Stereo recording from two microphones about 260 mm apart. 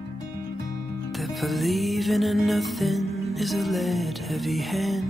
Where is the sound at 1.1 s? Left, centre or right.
Centre.